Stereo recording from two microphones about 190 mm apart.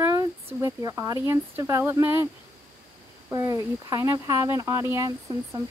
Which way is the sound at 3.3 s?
15° right (ahead or behind).